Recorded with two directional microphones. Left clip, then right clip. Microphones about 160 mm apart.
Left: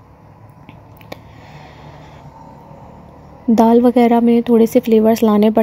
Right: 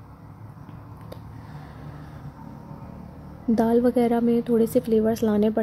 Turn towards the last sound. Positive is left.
turn(degrees=20)  # may be behind; listen again after turning